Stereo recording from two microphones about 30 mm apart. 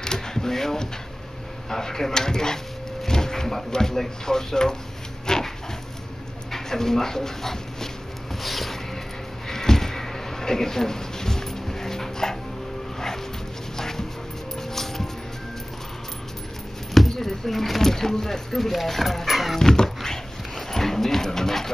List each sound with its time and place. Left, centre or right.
0.0 s a sound: left
1.7 s speech: centre
3.1 s a sound: centre
3.7 s speech: centre
5.3 s dog: left
6.5 s speech: centre
8.4 s a sound: centre
9.5 s a sound: centre
13.7 s dog: centre
14.7 s music: centre
17.1 s speech: centre
19.6 s dog: centre